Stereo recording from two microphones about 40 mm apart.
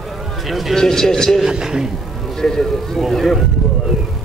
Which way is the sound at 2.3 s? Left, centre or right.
Centre.